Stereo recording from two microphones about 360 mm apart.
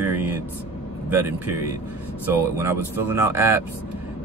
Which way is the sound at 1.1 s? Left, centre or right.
Centre.